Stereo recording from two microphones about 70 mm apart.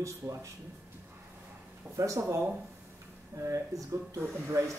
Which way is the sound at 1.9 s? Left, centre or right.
Right.